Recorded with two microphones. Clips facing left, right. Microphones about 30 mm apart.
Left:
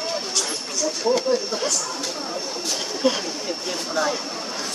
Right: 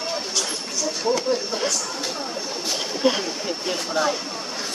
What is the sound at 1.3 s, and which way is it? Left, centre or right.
Speech, centre.